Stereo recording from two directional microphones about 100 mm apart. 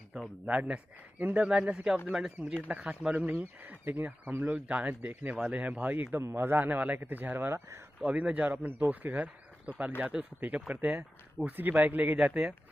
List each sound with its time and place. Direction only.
0.1 s a man's voice: 5° right (ahead or behind)
0.6 s speech: 15° right (ahead or behind)
6.0 s speech: 25° right (ahead or behind)
8.0 s speech: 10° right (ahead or behind)